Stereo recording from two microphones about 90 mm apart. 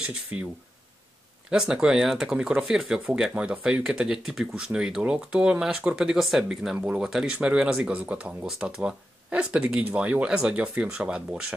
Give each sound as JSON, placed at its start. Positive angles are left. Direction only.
{"t": 0.0, "sound": "speech", "side_deg": -15}
{"t": 1.5, "sound": "speech", "side_deg": -5}